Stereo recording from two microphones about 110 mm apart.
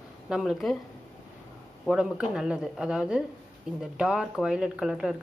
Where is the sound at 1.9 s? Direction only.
5° right (ahead or behind).